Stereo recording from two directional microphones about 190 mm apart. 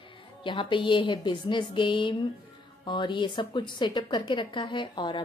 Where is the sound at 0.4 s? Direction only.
25° left (ahead or behind).